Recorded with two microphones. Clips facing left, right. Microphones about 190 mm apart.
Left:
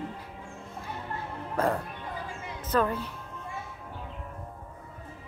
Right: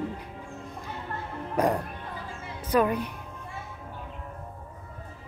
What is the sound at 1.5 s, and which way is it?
Speech, 15° right (ahead or behind).